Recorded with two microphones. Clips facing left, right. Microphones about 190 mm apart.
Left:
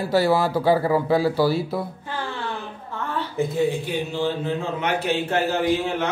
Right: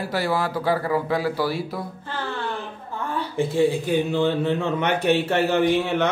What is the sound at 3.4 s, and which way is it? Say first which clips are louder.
Speech: right 2 dB; 30° right (ahead or behind).